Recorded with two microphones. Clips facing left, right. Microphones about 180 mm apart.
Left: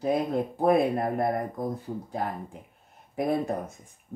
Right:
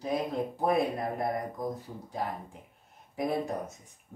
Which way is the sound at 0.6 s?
55° left (ahead or behind).